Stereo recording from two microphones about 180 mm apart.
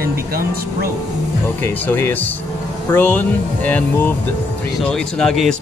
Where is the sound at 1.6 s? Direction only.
10° left (ahead or behind).